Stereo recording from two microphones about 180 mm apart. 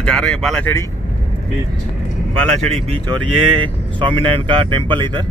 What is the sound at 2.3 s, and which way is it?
Speech, 5° left (ahead or behind).